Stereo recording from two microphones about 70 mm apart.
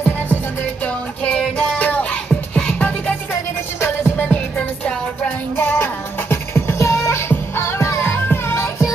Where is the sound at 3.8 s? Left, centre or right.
Left.